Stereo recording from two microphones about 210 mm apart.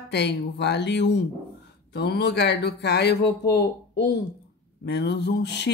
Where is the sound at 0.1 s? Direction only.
55° left (ahead or behind).